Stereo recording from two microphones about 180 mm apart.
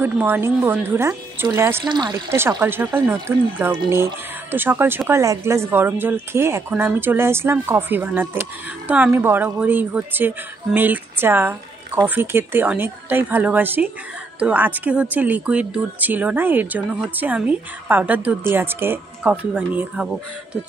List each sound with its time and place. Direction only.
0.0 s speech: 10° right (ahead or behind)